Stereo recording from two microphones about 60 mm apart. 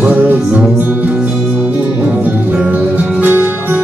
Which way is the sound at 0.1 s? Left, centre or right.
Right.